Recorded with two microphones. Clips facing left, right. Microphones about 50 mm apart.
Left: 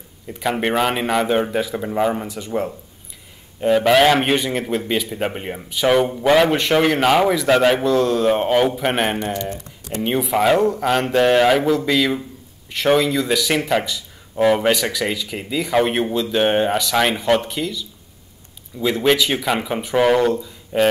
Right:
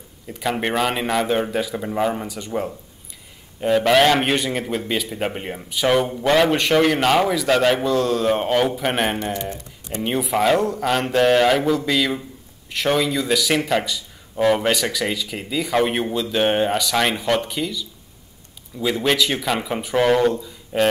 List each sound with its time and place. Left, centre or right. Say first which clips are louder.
0.3 s a man's voice: left 2 dB; centre
9.4 s a sound: left 2 dB; right
10.0 s a man's voice: left 2 dB; centre